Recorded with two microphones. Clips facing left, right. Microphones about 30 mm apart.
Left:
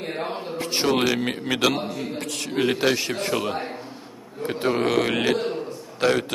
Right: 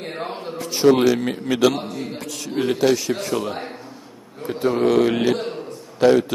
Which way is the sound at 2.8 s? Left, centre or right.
Left.